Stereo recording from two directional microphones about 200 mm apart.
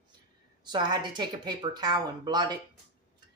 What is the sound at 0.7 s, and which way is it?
A woman's voice, 20° right (ahead or behind).